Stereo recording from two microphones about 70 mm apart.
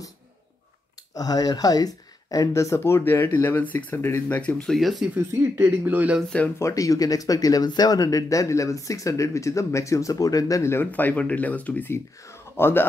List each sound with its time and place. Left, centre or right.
1.1 s speech: left
2.5 s speech: left
4.4 s speech: centre
4.6 s speech: centre
5.4 s speech: right
6.6 s speech: left
10.7 s speech: left
11.9 s speech: left